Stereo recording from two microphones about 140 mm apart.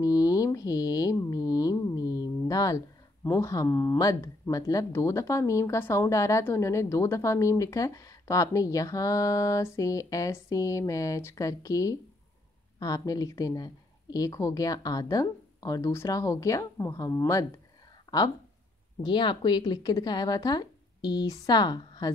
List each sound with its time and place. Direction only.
0.0 s mantra: 25° left (ahead or behind)
3.3 s speech: 20° left (ahead or behind)
18.1 s a sound: 25° left (ahead or behind)
19.0 s speech: 35° left (ahead or behind)